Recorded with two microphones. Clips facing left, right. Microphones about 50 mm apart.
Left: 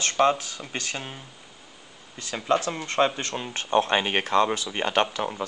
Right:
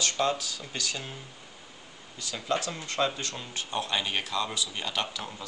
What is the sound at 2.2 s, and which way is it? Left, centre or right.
Speech, left.